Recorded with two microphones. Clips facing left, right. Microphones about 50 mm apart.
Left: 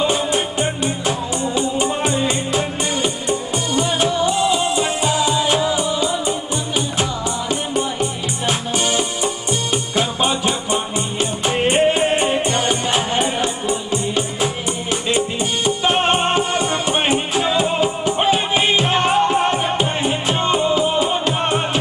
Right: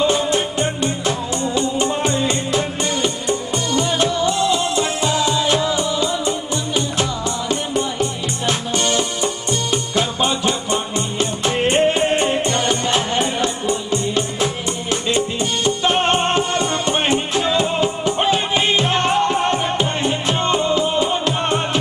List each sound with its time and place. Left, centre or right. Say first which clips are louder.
0.0 s music: right 1 dB; centre